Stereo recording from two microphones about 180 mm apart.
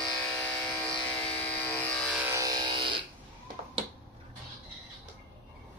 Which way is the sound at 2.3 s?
20° right (ahead or behind).